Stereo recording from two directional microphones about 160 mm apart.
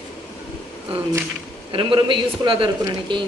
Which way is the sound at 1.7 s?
30° right (ahead or behind).